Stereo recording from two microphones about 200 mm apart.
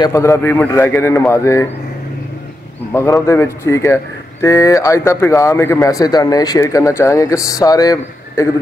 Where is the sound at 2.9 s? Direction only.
15° left (ahead or behind).